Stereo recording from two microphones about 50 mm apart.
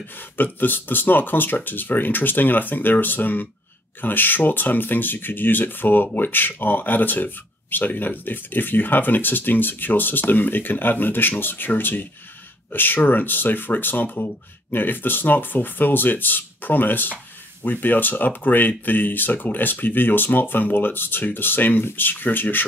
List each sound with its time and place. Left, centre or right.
0.4 s speech: left